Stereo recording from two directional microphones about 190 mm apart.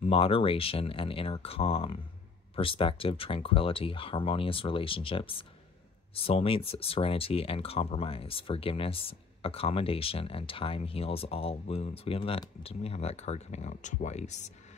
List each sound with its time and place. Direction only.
0.0 s speech: 30° left (ahead or behind)